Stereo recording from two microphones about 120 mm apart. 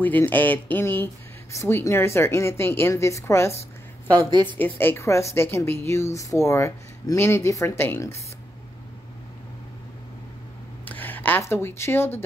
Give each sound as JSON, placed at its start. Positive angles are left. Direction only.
{"t": 0.0, "sound": "speech", "side_deg": 15}
{"t": 10.9, "sound": "speech", "side_deg": 15}